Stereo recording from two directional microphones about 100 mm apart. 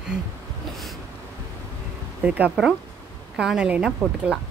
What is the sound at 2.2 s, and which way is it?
Speech, 15° right (ahead or behind).